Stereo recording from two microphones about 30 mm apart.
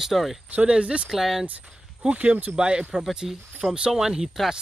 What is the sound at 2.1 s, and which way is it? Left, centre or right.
Speech, right.